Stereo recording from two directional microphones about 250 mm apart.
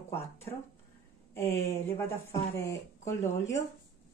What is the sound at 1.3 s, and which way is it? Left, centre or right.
Speech, centre.